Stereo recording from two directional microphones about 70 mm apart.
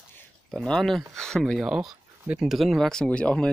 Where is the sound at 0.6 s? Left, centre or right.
Centre.